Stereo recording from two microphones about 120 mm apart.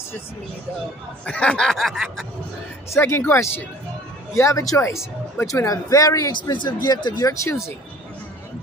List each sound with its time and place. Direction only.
1.2 s snicker: 10° left (ahead or behind)
2.9 s speech: 20° left (ahead or behind)
6.5 s speech: 40° left (ahead or behind); by 7.7 s 25° left (ahead or behind)